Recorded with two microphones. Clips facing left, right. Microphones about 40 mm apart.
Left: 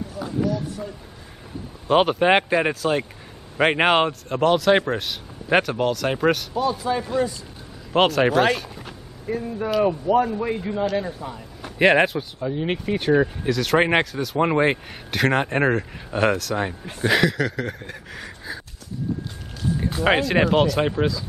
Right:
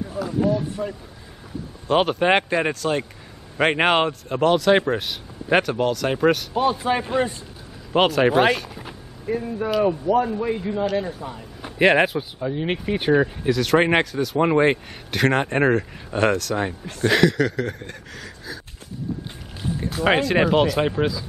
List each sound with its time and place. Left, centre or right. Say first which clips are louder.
0.4 s a sound: right 3 dB; right
1.9 s speech: left 1 dB; centre
6.5 s speech: right 2 dB; right
7.9 s speech: even; centre
8.3 s speech: right 1 dB; centre
19.8 s speech: right 1 dB; centre